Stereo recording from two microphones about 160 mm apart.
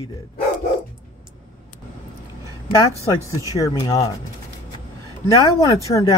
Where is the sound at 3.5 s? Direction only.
20° left (ahead or behind).